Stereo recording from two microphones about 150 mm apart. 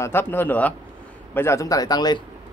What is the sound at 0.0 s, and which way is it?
A man's voice, 15° left (ahead or behind).